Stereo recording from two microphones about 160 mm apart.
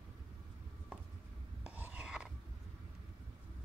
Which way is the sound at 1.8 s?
5° right (ahead or behind).